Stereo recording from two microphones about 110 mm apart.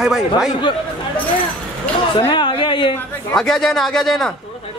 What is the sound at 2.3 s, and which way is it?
Speech, 50° left (ahead or behind).